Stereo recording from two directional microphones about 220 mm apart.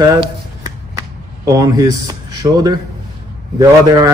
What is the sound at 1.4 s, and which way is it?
Speech, 15° right (ahead or behind).